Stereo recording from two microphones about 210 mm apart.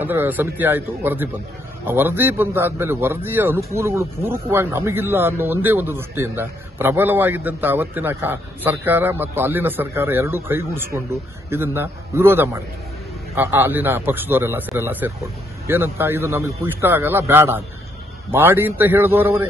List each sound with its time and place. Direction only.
0.0 s a man's voice: 10° right (ahead or behind)